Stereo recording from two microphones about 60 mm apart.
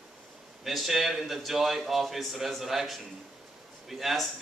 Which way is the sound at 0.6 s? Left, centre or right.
Centre.